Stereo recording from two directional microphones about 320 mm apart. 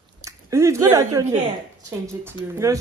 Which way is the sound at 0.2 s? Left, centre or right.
Centre.